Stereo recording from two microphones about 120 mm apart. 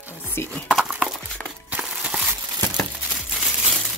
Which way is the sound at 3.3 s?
Centre (ahead or behind).